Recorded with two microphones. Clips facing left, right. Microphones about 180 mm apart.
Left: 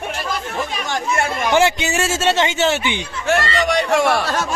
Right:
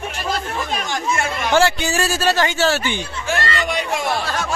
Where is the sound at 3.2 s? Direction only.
70° left (ahead or behind).